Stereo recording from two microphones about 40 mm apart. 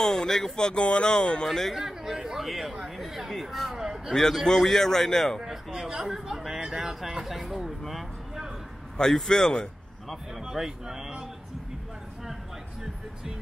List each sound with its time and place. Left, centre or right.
0.0 s a man's voice: centre
1.5 s speech: centre
1.8 s speech: centre
3.7 s speech: centre
4.1 s a man's voice: centre
6.0 s speech: centre
8.9 s a man's voice: centre
10.4 s speech: centre